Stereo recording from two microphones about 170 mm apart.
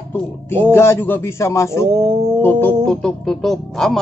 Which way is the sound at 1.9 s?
35° right (ahead or behind).